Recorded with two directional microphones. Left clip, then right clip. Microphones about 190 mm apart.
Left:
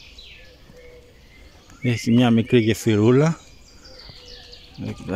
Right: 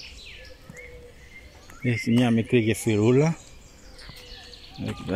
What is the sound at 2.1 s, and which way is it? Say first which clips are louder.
Speech: left 5 dB; 35° left (ahead or behind).